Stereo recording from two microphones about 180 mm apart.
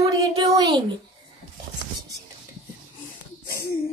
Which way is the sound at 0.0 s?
20° right (ahead or behind).